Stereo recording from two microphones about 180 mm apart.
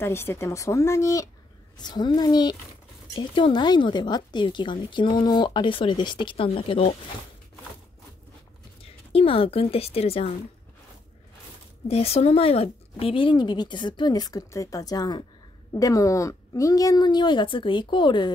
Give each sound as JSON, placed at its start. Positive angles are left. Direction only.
{"t": 0.0, "sound": "speech", "side_deg": 15}
{"t": 8.8, "sound": "speech", "side_deg": 30}
{"t": 11.9, "sound": "speech", "side_deg": 35}